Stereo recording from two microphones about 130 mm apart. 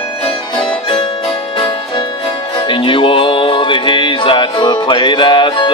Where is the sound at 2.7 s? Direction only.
40° left (ahead or behind).